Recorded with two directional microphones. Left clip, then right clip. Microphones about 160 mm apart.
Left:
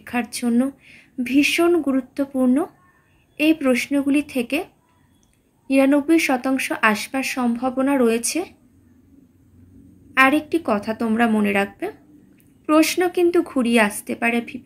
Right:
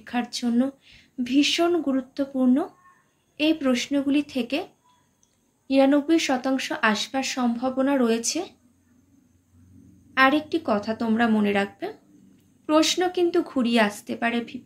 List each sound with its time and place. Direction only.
0.0 s speech: 25° left (ahead or behind)
5.7 s speech: 25° left (ahead or behind)
10.1 s speech: 20° left (ahead or behind)